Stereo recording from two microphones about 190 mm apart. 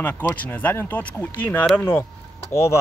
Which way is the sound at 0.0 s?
10° left (ahead or behind).